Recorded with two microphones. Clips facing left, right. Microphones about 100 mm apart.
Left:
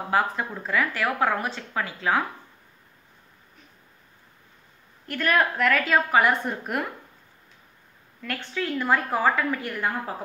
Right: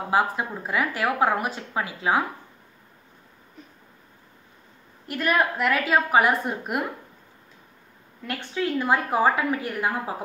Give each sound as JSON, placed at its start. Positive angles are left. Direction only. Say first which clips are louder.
{"t": 0.1, "sound": "speech", "louder": "right 1 dB", "side_deg": -15}
{"t": 5.0, "sound": "speech", "louder": "even", "side_deg": -10}
{"t": 8.2, "sound": "speech", "louder": "right 2 dB", "side_deg": -20}